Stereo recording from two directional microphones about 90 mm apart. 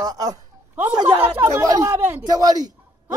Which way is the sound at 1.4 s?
40° right (ahead or behind).